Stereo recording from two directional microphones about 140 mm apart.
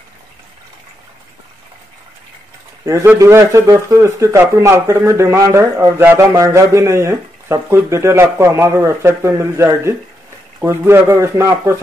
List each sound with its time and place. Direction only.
2.8 s speech: 20° right (ahead or behind)